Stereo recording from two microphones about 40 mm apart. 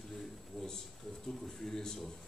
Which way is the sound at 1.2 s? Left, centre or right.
Centre.